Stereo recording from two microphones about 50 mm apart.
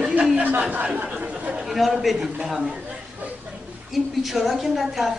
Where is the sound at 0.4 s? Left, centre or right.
Right.